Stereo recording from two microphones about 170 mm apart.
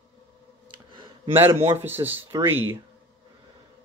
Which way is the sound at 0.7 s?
30° right (ahead or behind).